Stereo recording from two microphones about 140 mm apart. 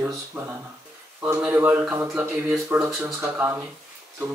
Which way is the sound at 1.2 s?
20° right (ahead or behind).